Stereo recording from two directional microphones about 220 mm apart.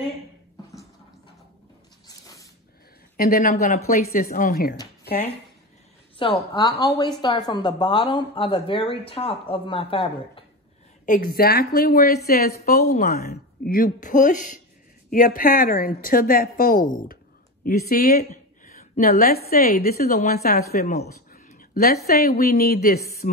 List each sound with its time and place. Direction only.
3.2 s a woman's voice: 40° left (ahead or behind)
6.1 s a woman's voice: 25° left (ahead or behind)
11.1 s a woman's voice: 40° left (ahead or behind)